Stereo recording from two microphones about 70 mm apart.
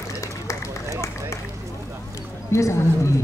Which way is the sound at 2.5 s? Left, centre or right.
Left.